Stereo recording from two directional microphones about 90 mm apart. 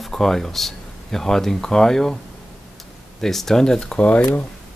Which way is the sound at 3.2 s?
5° left (ahead or behind).